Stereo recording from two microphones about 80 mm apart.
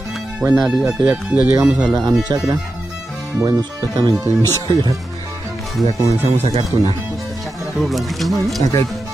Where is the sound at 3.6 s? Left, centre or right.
Right.